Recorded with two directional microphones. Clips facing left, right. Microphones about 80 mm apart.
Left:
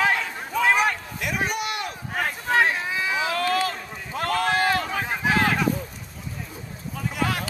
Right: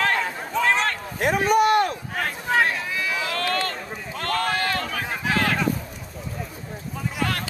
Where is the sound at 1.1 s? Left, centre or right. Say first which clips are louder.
Right 8 dB; right.